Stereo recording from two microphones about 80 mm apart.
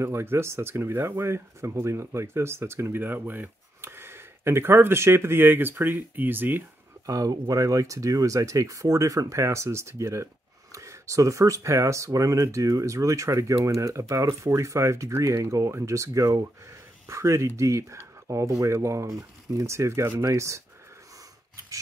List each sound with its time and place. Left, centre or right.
0.0 s speech: right
7.1 s speech: right